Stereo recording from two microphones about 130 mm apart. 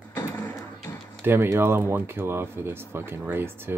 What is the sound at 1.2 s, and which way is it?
Speech, 20° right (ahead or behind).